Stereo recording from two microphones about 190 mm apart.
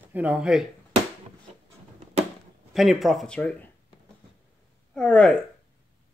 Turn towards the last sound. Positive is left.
turn(degrees=5)  # may be behind; listen again after turning